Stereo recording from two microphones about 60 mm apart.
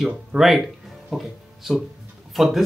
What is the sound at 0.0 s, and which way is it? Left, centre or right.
Speech, centre.